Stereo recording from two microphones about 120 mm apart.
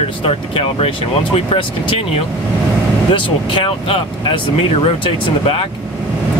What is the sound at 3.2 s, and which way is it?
Speech, 45° left (ahead or behind).